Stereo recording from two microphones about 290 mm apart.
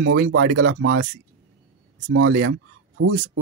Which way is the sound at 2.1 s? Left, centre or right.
Right.